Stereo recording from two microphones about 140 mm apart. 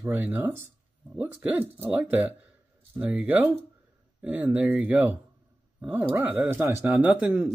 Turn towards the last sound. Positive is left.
turn(degrees=-10)  # may be behind; listen again after turning